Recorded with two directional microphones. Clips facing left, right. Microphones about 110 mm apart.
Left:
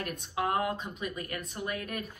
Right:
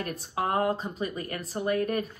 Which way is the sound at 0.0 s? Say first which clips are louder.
Right 2 dB; 40° right (ahead or behind).